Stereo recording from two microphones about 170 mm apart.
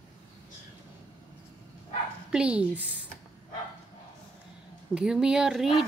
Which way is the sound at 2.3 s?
5° right (ahead or behind).